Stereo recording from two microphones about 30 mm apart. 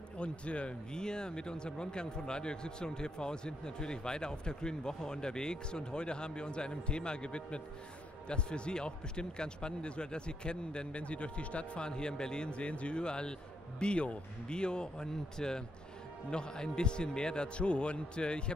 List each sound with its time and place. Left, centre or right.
0.2 s a man's voice: left
0.9 s a man's voice: left
12.5 s a man's voice: left